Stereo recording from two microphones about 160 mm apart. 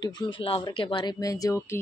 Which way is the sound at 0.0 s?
30° left (ahead or behind).